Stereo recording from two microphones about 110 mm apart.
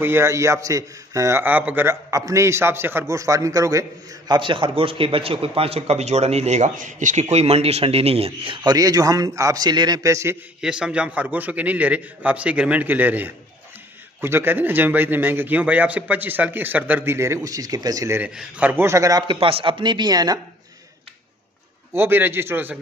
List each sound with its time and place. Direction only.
0.0 s a man's voice: 25° right (ahead or behind)
1.4 s a man's voice: 15° right (ahead or behind)
1.9 s a man's voice: 30° right (ahead or behind)
4.4 s a man's voice: 50° right (ahead or behind)
8.6 s a man's voice: 35° right (ahead or behind)
10.6 s a man's voice: 5° right (ahead or behind); by 18.1 s 35° right (ahead or behind)
18.3 s a man's voice: 5° right (ahead or behind)
18.7 s a man's voice: 20° right (ahead or behind)
19.2 s speech: 50° right (ahead or behind)
21.9 s a man's voice: 20° right (ahead or behind)